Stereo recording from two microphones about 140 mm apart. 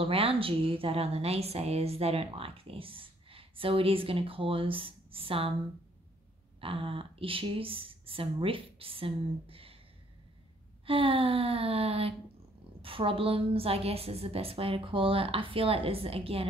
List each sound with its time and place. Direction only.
0.0 s a woman's voice: 40° right (ahead or behind)
6.6 s a woman's voice: 40° right (ahead or behind)
10.9 s a woman's voice: 40° right (ahead or behind)